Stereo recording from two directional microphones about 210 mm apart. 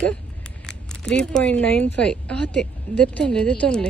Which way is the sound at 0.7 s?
5° left (ahead or behind).